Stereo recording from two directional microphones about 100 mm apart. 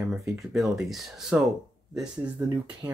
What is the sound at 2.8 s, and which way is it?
Speech, 40° right (ahead or behind).